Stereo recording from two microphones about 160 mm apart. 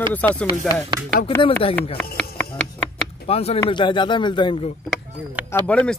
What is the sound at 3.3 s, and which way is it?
Speech, 40° left (ahead or behind).